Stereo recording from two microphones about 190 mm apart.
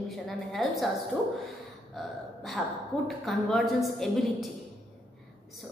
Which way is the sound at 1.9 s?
Centre (ahead or behind).